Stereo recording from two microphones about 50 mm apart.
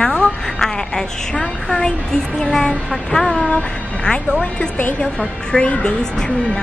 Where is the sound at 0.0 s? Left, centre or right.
Centre.